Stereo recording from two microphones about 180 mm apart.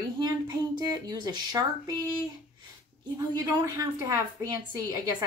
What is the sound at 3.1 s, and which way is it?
Speech, 20° right (ahead or behind).